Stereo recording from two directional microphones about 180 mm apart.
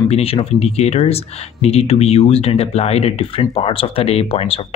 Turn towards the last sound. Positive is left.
turn(degrees=30)  # may be behind; listen again after turning